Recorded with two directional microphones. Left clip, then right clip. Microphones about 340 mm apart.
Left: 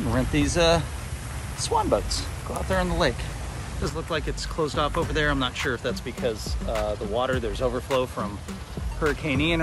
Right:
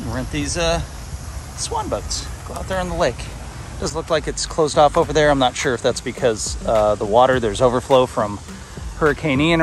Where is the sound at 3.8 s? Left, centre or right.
Centre.